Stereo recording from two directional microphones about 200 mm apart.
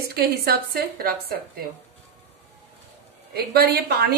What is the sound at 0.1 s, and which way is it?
A woman's voice, 50° right (ahead or behind).